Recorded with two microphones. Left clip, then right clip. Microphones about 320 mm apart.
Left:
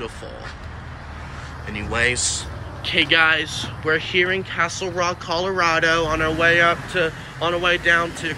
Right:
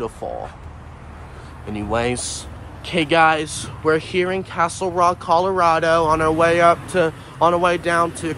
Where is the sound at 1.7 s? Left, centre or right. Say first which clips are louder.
Left 1 dB; centre.